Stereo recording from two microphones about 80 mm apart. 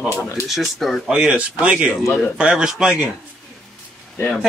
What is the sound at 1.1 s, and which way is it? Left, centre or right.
Speech, centre.